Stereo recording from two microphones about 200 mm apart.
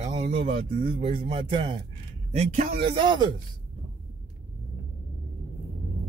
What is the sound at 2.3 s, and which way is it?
Speech, 40° right (ahead or behind).